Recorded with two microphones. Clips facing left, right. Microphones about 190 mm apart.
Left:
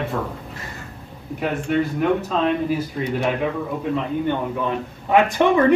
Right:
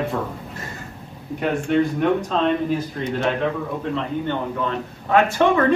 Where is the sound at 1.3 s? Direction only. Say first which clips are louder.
Right 2 dB; centre (ahead or behind).